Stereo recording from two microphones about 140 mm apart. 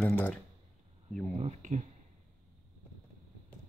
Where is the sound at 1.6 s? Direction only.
55° right (ahead or behind).